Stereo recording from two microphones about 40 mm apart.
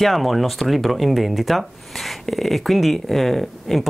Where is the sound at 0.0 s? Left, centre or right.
Centre.